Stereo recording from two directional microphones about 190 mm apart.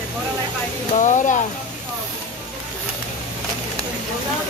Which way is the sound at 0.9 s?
40° left (ahead or behind).